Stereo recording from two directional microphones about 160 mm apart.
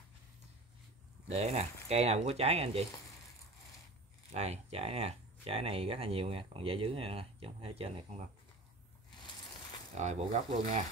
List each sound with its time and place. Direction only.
1.3 s speech: 40° right (ahead or behind)
4.3 s speech: 40° right (ahead or behind)
9.9 s speech: 45° right (ahead or behind)